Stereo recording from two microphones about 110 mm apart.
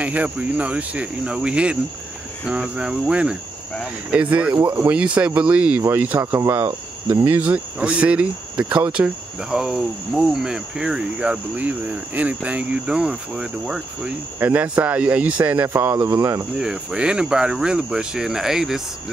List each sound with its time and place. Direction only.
0.0 s speech: 15° right (ahead or behind)
6.3 s speech: 25° right (ahead or behind)
7.3 s speech: 15° right (ahead or behind)
16.5 s speech: 5° right (ahead or behind)